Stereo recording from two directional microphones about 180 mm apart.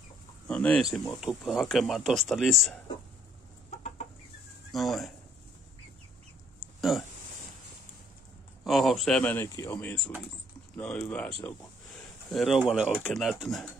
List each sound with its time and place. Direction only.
0.5 s speech: 5° left (ahead or behind)
4.7 s speech: centre (ahead or behind)
6.6 s a sound: centre (ahead or behind)
8.6 s speech: centre (ahead or behind)